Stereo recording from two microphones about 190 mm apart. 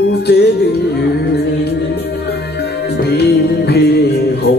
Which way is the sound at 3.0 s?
60° left (ahead or behind).